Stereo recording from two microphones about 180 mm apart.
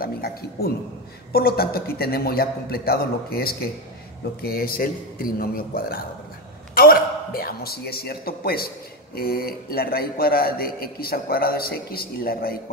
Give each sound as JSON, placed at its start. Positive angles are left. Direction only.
{"t": 0.0, "sound": "a man's voice", "side_deg": 60}